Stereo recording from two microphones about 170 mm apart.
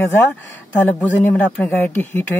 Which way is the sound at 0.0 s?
15° left (ahead or behind).